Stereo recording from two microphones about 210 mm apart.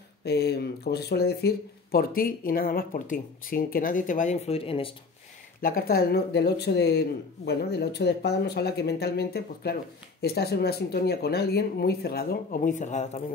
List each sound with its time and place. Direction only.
0.2 s speech: 50° left (ahead or behind); by 4.9 s 25° left (ahead or behind)
5.6 s speech: 45° left (ahead or behind)